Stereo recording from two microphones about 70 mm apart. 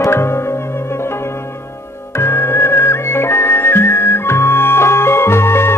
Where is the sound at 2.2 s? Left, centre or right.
Left.